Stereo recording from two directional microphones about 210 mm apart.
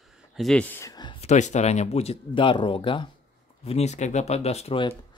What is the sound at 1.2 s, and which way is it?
Speech, 35° left (ahead or behind).